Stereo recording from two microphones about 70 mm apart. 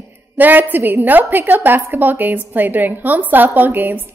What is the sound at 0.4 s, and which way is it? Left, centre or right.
A woman's voice, right.